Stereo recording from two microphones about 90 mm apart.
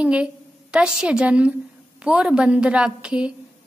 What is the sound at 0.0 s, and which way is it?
A woman's voice, 10° right (ahead or behind).